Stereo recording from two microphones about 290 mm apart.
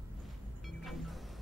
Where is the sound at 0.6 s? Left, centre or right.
Centre.